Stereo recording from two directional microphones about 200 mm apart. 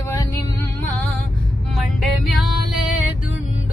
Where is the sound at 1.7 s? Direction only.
Centre (ahead or behind).